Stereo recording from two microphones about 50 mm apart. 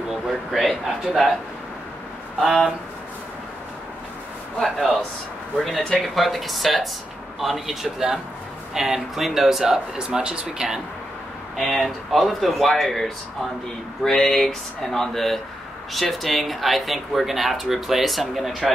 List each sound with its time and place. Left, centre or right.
0.1 s a sound: centre
2.4 s speech: centre
4.6 s speech: centre
11.7 s speech: centre